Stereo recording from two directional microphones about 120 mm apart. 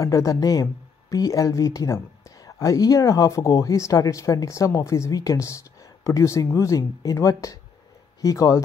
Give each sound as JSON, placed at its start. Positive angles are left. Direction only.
{"t": 0.0, "sound": "speech", "side_deg": 25}